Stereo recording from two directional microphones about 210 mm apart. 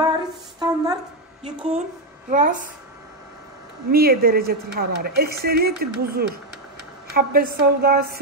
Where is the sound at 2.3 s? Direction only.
40° right (ahead or behind).